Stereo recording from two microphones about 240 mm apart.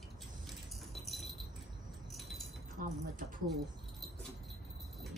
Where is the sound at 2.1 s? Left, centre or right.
Centre.